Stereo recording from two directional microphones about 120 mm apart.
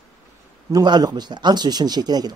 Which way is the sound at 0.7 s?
35° right (ahead or behind).